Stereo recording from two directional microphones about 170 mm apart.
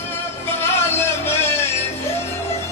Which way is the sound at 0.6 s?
15° left (ahead or behind).